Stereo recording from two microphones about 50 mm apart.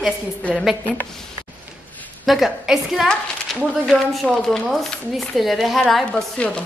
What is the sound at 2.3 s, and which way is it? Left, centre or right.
Speech, centre.